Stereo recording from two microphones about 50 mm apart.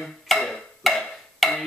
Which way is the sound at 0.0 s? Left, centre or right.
Centre.